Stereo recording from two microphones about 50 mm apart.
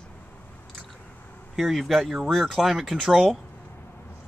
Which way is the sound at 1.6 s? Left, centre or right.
Centre.